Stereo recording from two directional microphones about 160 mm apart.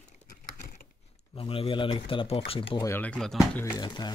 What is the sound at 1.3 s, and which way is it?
Speech, 35° left (ahead or behind).